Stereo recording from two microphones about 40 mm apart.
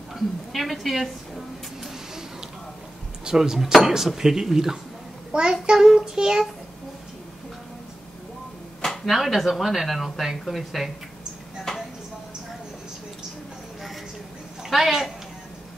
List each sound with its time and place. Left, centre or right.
0.1 s a sound: centre
3.3 s speech: centre
8.8 s speech: centre
14.6 s a woman's voice: centre